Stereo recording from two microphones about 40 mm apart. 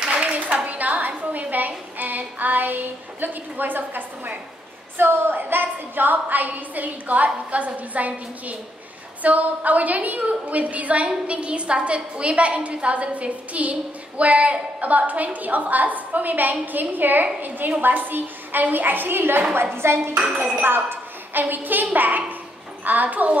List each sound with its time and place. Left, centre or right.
0.2 s clapping: right
0.7 s a sound: right
2.0 s a woman's voice: right
4.9 s a woman's voice: right
19.5 s a woman's voice: right
20.2 s speech: right
20.6 s a woman's voice: right